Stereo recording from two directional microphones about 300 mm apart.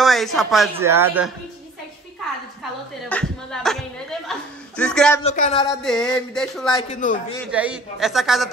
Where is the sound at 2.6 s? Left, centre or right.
Centre.